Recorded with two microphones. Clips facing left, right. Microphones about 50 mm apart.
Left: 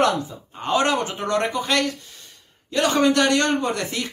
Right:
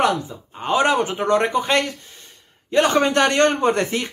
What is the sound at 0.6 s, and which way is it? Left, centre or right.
Speech, centre.